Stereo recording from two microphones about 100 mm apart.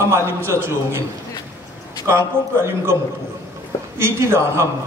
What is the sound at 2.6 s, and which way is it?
Speech, 25° right (ahead or behind).